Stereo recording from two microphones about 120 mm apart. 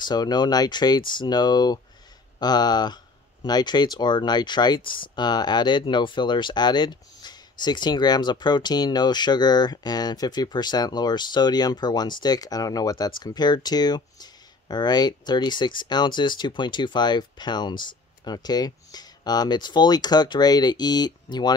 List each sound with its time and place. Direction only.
0.0 s speech: 35° left (ahead or behind)